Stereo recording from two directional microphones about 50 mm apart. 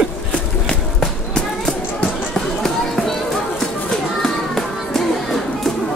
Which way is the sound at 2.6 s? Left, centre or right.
Centre.